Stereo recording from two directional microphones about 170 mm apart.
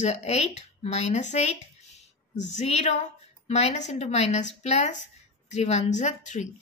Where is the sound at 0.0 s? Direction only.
40° left (ahead or behind).